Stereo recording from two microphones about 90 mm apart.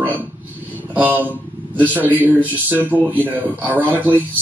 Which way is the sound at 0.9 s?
20° right (ahead or behind).